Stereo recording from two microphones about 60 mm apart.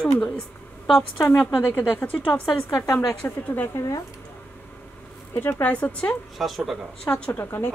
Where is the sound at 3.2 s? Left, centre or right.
Left.